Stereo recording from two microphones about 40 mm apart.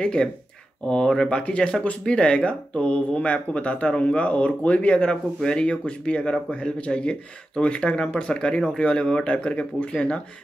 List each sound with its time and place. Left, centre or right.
0.0 s speech: left
1.4 s speech: left